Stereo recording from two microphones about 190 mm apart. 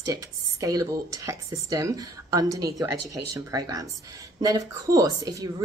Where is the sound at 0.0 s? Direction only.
20° right (ahead or behind).